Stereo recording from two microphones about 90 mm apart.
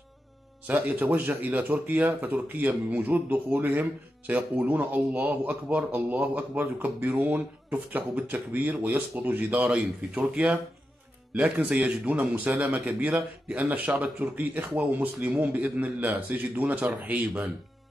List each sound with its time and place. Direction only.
0.7 s speech: 20° right (ahead or behind)